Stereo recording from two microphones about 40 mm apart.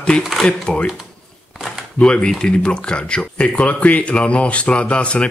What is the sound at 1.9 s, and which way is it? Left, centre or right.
Speech, left.